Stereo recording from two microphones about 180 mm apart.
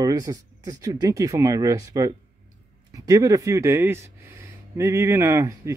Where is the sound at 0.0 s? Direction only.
20° right (ahead or behind).